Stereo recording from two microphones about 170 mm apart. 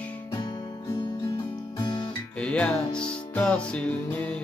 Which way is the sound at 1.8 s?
25° left (ahead or behind).